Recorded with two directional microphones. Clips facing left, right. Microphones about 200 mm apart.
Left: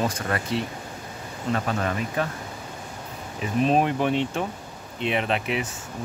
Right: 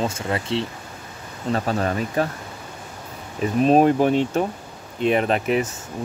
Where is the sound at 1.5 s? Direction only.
35° right (ahead or behind).